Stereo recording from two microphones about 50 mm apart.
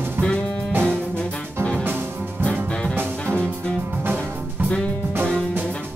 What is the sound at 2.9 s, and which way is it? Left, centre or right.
Music, right.